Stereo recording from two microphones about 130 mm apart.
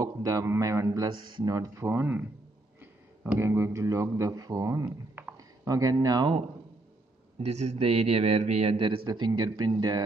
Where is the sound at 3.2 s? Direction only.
15° right (ahead or behind); by 6.4 s 30° right (ahead or behind).